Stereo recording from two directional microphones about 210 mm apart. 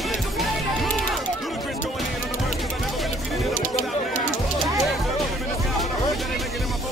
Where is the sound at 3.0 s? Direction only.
Centre (ahead or behind).